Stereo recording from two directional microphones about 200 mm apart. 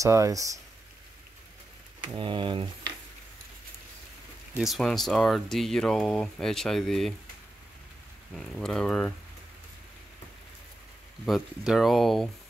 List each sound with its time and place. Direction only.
0.0 s speech: 15° right (ahead or behind)
2.1 s speech: 25° right (ahead or behind)
4.6 s speech: centre (ahead or behind)
8.4 s speech: centre (ahead or behind)
11.2 s speech: centre (ahead or behind)